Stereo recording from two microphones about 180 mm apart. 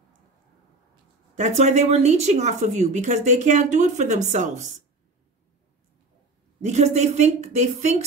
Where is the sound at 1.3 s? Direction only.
40° right (ahead or behind).